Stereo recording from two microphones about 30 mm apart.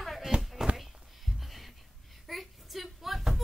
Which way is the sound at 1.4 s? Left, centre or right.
Centre.